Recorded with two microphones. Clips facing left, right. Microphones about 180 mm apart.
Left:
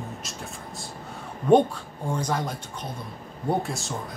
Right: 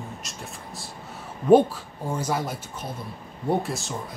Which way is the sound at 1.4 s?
5° right (ahead or behind).